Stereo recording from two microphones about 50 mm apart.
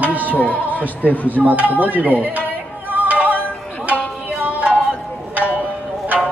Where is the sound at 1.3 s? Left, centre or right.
Right.